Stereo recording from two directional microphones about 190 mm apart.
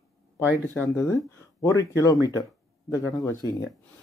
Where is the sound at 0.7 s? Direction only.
10° left (ahead or behind).